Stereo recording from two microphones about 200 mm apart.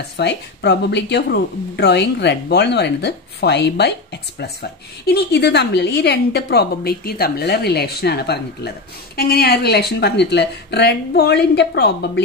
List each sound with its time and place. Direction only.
0.2 s a woman's voice: 60° left (ahead or behind)